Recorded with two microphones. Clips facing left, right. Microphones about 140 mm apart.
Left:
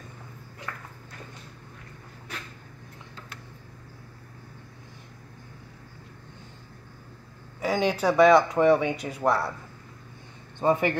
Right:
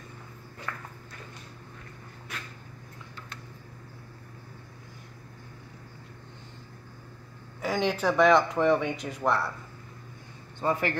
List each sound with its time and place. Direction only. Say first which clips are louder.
7.6 s speech: left 3 dB; 10° left (ahead or behind)
10.6 s a man's voice: left 5 dB; 20° left (ahead or behind)